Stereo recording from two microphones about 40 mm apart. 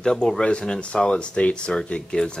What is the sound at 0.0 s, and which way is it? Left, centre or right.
Speech, centre.